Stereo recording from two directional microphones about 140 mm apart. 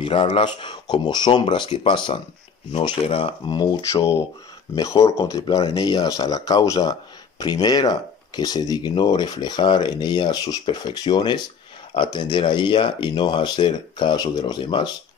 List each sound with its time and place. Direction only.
0.0 s speech: 40° left (ahead or behind)
3.9 s speech: 20° left (ahead or behind)